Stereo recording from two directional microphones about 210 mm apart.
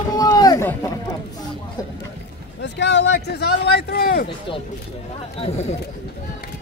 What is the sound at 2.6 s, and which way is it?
Speech, 55° left (ahead or behind).